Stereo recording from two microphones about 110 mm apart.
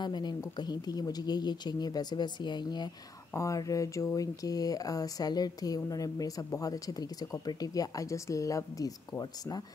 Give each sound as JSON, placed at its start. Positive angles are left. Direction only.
{"t": 0.0, "sound": "speech", "side_deg": 40}
{"t": 3.3, "sound": "speech", "side_deg": 30}